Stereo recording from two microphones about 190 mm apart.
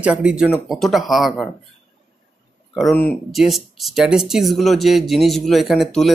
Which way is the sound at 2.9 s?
10° left (ahead or behind).